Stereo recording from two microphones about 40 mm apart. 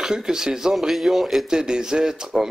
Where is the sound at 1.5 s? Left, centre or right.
Centre.